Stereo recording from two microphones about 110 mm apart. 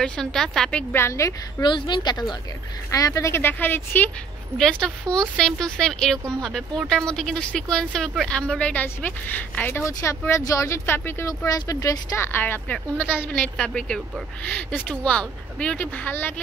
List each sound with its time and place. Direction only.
0.0 s a woman's voice: 5° left (ahead or behind)
0.9 s speech: 25° left (ahead or behind)
1.6 s a woman's voice: 45° left (ahead or behind)
2.9 s speech: 30° left (ahead or behind)
4.6 s speech: 5° left (ahead or behind)